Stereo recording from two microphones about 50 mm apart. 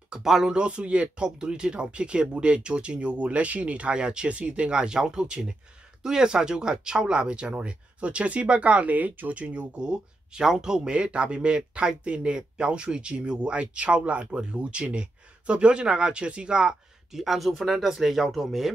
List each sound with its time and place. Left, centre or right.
0.1 s speech: centre
0.5 s speech: right
17.1 s speech: centre